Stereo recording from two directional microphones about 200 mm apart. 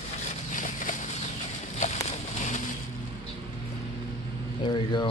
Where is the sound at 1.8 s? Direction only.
35° left (ahead or behind).